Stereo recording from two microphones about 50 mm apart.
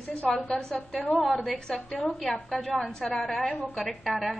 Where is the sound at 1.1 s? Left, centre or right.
Centre.